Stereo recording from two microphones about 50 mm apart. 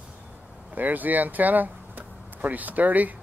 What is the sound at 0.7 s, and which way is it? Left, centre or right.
Speech, right.